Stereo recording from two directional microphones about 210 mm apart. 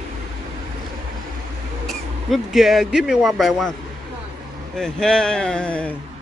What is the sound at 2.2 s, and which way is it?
A man's voice, centre (ahead or behind).